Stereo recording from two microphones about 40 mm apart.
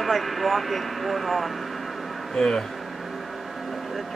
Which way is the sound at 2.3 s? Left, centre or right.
Centre.